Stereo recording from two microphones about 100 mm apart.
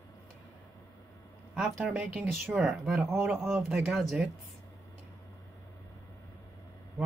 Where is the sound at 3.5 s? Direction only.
20° right (ahead or behind).